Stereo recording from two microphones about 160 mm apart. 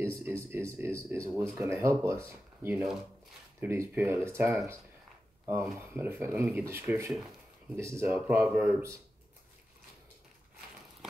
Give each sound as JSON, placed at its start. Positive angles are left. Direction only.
{"t": 0.0, "sound": "speech", "side_deg": -15}
{"t": 5.5, "sound": "speech", "side_deg": -15}